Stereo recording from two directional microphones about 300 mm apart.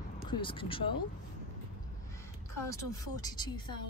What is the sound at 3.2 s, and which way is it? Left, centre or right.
Speech, centre.